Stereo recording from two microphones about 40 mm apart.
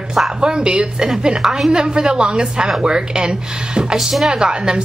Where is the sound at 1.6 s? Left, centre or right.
Right.